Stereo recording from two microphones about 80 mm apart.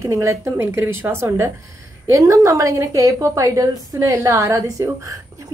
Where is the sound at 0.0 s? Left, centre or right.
Right.